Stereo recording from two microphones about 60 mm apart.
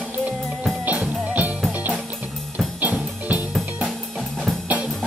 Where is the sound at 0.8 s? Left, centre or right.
Right.